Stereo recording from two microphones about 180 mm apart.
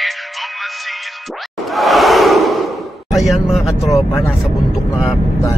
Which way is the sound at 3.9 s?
15° left (ahead or behind).